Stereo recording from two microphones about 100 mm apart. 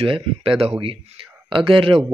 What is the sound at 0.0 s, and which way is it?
Speech, 70° right (ahead or behind).